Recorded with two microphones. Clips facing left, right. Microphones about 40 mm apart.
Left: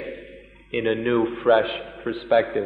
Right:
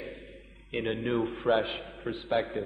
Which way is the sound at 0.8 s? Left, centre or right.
Left.